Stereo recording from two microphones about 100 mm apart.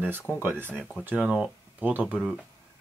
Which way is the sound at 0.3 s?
20° right (ahead or behind).